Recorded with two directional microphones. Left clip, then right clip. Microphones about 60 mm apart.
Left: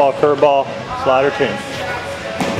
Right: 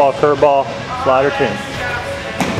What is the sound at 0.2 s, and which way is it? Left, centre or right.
Speech, centre.